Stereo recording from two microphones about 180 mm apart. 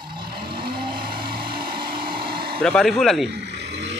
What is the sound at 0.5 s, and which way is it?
Vehicle, 25° right (ahead or behind).